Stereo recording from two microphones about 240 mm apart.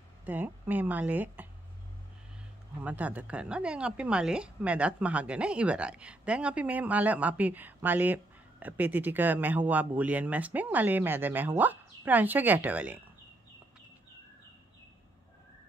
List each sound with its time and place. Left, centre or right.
0.2 s a woman's voice: centre
2.8 s a woman's voice: centre